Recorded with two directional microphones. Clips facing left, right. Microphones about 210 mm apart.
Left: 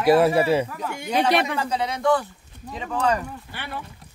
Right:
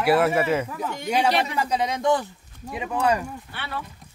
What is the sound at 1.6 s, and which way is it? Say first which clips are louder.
Speech: right 1 dB; 15° right (ahead or behind).